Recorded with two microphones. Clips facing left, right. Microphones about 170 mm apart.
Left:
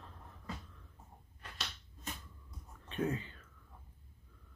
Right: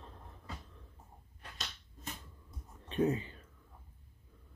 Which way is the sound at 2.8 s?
25° right (ahead or behind).